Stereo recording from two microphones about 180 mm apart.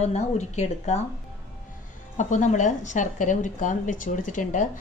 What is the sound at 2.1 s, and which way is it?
Speech, 40° left (ahead or behind).